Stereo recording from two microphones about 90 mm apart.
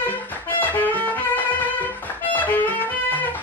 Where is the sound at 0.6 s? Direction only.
20° left (ahead or behind).